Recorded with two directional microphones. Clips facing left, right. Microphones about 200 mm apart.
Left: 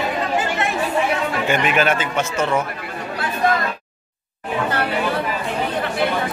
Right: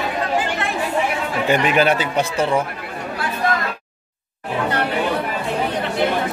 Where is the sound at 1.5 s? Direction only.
35° right (ahead or behind).